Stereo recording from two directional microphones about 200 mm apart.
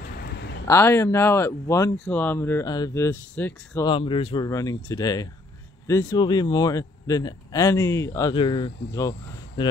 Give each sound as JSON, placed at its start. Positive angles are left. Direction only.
{"t": 0.7, "sound": "speech", "side_deg": 15}
{"t": 3.8, "sound": "speech", "side_deg": 25}